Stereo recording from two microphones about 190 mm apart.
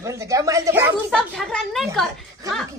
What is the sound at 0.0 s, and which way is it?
A woman's voice, 15° right (ahead or behind).